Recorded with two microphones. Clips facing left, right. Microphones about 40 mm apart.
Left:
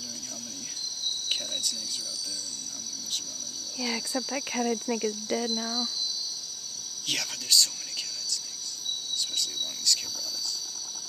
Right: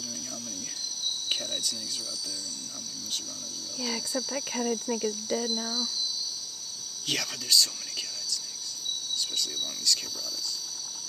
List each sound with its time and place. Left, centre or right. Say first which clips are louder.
3.8 s cricket: left 1 dB; centre
7.1 s speech: even; centre
9.9 s speech: even; centre